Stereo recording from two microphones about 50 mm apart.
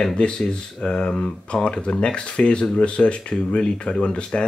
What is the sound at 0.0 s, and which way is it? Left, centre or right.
Speech, centre.